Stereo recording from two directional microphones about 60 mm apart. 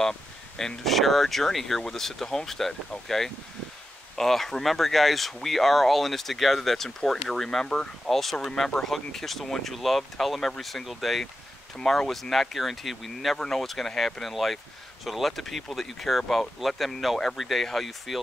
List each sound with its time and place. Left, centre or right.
0.0 s speech: centre
4.2 s speech: centre
7.6 s speech: centre
8.1 s speech: centre